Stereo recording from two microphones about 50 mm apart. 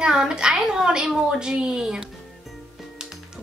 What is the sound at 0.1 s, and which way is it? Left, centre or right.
A child's voice, centre.